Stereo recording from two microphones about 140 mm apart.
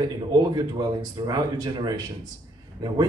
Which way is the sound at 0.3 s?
30° right (ahead or behind).